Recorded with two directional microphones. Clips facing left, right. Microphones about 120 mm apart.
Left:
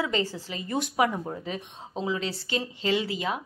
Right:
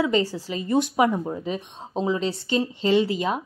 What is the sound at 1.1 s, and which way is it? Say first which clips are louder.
Speech: right 5 dB; 15° right (ahead or behind).